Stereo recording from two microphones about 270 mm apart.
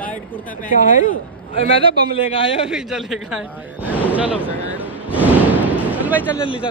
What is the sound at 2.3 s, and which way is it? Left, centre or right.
Speech, left.